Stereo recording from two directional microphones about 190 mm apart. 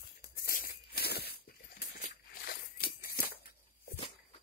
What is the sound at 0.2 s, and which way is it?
Tearing, 55° left (ahead or behind).